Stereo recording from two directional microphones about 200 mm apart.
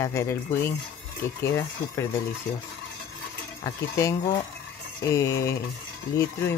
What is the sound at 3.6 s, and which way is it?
Speech, 15° left (ahead or behind).